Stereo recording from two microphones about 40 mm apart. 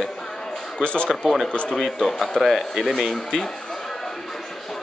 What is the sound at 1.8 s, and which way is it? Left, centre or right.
Speech, centre.